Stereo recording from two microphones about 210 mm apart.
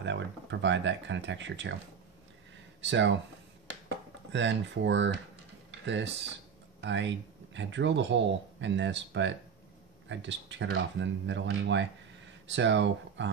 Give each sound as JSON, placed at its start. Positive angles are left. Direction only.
{"t": 0.0, "sound": "speech", "side_deg": -60}
{"t": 2.8, "sound": "speech", "side_deg": -60}
{"t": 4.3, "sound": "speech", "side_deg": -60}
{"t": 6.8, "sound": "speech", "side_deg": -60}